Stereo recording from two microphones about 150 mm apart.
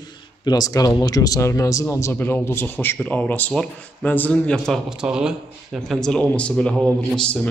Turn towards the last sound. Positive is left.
turn(degrees=5)  # may be behind; listen again after turning